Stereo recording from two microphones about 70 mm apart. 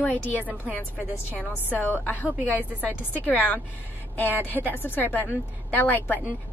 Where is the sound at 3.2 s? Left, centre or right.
Left.